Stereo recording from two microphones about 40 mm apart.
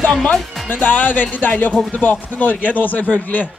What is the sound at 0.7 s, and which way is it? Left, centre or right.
A man's voice, left.